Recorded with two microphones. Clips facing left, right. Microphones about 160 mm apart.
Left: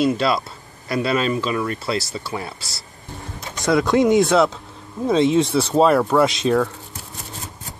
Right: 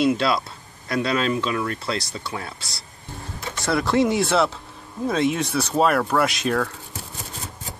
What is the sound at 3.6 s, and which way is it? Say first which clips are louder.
Speech: left 3 dB; 20° left (ahead or behind).